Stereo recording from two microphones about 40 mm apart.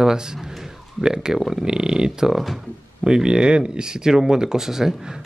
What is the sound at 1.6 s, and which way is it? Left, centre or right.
Speech, centre.